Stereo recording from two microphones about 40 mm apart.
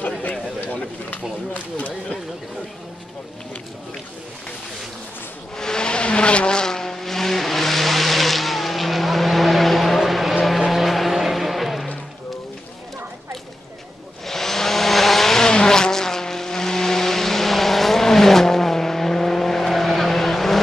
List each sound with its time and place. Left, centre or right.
0.2 s a sound: left
5.6 s vehicle: centre
14.2 s vehicle: centre